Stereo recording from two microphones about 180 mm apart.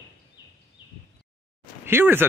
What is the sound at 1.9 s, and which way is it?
Speech, 10° right (ahead or behind).